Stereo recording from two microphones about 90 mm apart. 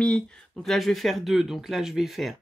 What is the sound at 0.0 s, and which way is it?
Speech, 10° left (ahead or behind).